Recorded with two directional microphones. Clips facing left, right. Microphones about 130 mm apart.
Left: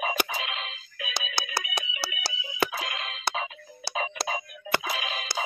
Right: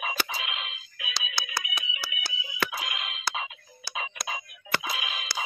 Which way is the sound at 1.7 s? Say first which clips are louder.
Left 4 dB; 40° left (ahead or behind).